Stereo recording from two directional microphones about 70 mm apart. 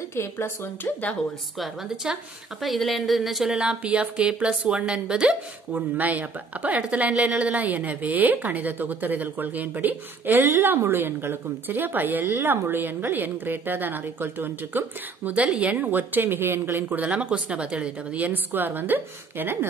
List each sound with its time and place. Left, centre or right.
0.1 s speech: left
2.0 s a woman's voice: centre
2.6 s speech: centre
3.5 s a woman's voice: centre
5.7 s speech: right
15.3 s speech: centre; by 19.7 s right